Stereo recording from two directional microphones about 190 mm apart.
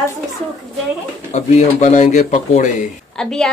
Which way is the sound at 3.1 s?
5° left (ahead or behind).